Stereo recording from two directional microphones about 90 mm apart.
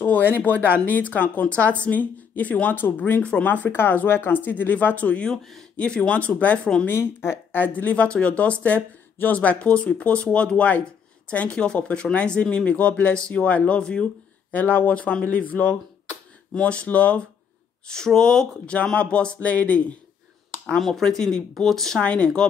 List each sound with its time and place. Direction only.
0.3 s speech: 20° left (ahead or behind); by 5.7 s centre (ahead or behind)
5.8 s speech: 15° left (ahead or behind)
6.9 s speech: 30° left (ahead or behind)
20.6 s speech: 5° left (ahead or behind)